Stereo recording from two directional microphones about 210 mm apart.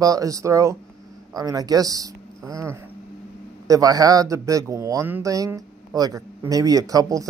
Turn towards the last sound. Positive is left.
turn(degrees=-15)  # may be behind; listen again after turning